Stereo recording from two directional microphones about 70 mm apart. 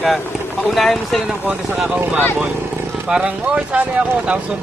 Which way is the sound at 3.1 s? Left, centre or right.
Centre.